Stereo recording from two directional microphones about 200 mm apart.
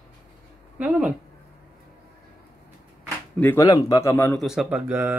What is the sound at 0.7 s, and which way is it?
Speech, 5° right (ahead or behind).